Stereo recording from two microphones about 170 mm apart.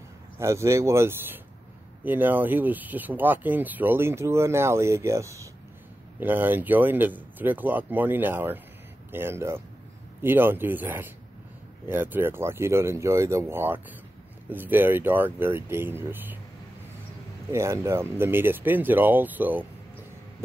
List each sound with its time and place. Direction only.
0.4 s speech: 15° right (ahead or behind)
17.5 s speech: 15° right (ahead or behind)